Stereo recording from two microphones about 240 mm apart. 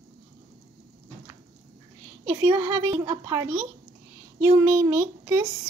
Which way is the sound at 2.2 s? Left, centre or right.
Centre.